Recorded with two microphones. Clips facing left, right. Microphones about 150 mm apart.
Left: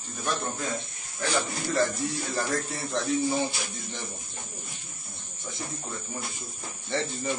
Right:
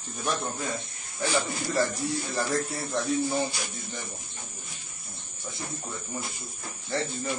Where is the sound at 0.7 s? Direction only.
Centre (ahead or behind).